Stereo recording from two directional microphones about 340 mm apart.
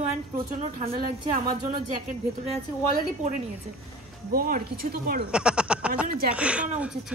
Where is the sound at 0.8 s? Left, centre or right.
Right.